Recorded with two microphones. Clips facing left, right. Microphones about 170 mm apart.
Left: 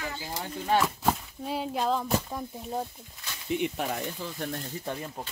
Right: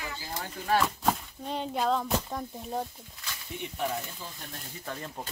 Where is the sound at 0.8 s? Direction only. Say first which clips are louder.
Even; 5° left (ahead or behind).